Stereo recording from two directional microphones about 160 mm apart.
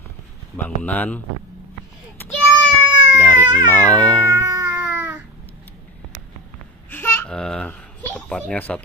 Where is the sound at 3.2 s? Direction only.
10° left (ahead or behind).